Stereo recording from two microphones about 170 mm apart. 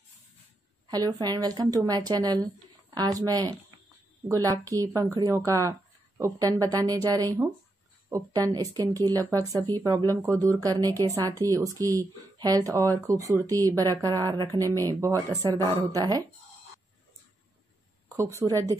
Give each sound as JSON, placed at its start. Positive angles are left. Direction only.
{"t": 0.8, "sound": "speech", "side_deg": -20}
{"t": 4.6, "sound": "speech", "side_deg": -20}
{"t": 18.0, "sound": "speech", "side_deg": -15}